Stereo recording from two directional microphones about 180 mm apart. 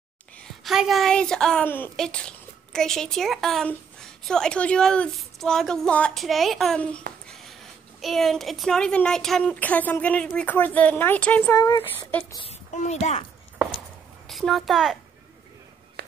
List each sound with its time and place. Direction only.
0.4 s a woman's voice: centre (ahead or behind)
8.0 s speech: centre (ahead or behind)
12.7 s a child's voice: 40° left (ahead or behind)
14.2 s a woman's voice: centre (ahead or behind)
16.0 s a sound: 60° right (ahead or behind)